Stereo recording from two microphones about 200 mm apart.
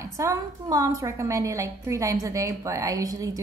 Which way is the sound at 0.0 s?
15° right (ahead or behind).